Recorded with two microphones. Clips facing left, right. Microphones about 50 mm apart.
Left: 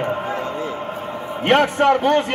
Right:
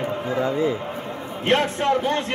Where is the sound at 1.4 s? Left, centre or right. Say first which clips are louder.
Left 5 dB; left.